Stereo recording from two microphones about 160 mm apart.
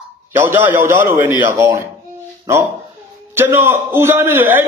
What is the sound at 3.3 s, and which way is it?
A man's voice, 15° right (ahead or behind).